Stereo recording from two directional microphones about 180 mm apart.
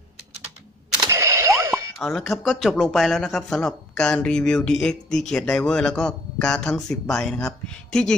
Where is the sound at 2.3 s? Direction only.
Centre (ahead or behind).